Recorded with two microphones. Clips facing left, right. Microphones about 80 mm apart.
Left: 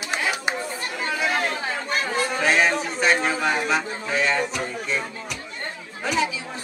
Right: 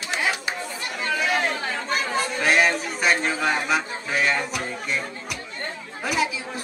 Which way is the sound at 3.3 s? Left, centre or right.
Centre.